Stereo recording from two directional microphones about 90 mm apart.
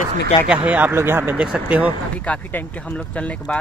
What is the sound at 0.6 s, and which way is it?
Speech, 15° right (ahead or behind).